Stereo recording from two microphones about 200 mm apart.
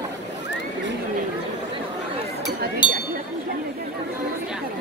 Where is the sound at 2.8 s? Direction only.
25° left (ahead or behind).